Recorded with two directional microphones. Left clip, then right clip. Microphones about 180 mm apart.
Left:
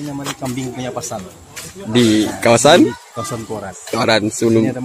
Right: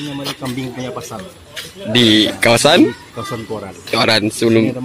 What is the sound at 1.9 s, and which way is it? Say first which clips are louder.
Speech: right 3 dB; centre (ahead or behind).